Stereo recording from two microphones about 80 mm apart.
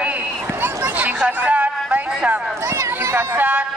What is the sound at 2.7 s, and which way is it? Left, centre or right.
Run, right.